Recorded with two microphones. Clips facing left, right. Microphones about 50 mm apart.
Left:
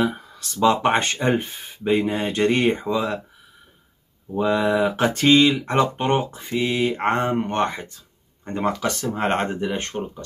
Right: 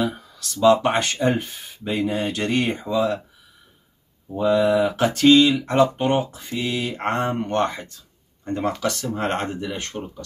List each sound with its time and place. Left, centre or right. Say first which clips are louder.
0.0 s speech: left 2 dB; left
4.4 s speech: right 2 dB; left
9.1 s speech: left 2 dB; left